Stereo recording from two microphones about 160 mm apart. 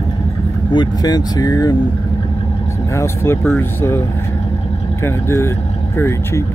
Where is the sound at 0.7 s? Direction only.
30° left (ahead or behind).